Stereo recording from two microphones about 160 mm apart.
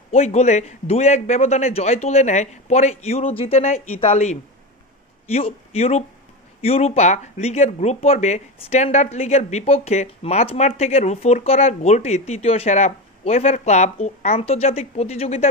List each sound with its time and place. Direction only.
0.1 s a man's voice: 45° left (ahead or behind)